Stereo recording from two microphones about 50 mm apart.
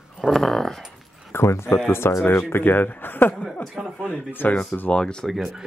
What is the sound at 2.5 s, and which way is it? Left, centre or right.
Speech, left.